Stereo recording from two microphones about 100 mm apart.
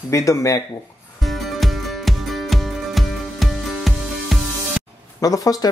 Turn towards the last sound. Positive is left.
turn(degrees=40)  # may be behind; listen again after turning